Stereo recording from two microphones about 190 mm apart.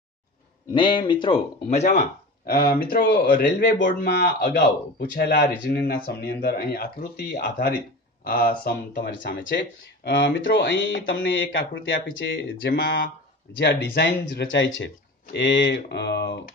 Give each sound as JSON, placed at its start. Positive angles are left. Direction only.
{"t": 0.7, "sound": "speech", "side_deg": 25}
{"t": 12.7, "sound": "speech", "side_deg": 55}
{"t": 15.3, "sound": "speech", "side_deg": 60}